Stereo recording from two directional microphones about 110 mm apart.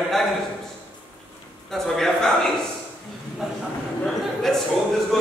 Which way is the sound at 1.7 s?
5° left (ahead or behind).